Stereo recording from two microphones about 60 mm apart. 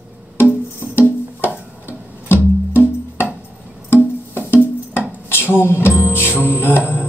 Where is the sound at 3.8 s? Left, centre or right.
Left.